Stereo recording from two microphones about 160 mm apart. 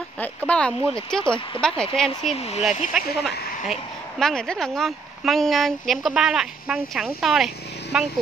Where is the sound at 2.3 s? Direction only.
40° left (ahead or behind).